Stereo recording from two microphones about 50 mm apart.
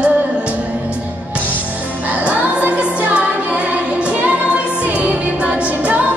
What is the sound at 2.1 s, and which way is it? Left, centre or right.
Music, right.